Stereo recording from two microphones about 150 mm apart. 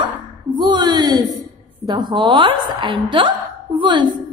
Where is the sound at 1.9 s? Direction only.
30° right (ahead or behind).